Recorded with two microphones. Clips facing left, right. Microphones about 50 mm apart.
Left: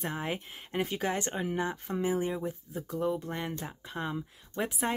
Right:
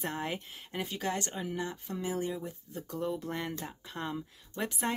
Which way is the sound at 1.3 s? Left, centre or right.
Left.